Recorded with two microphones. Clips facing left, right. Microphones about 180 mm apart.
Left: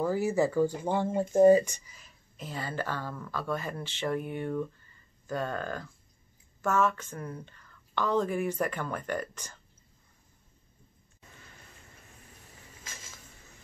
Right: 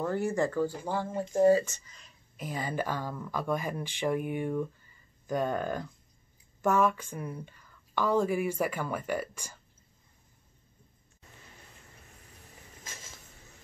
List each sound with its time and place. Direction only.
0.0 s speech: 5° left (ahead or behind)
2.3 s speech: 15° right (ahead or behind)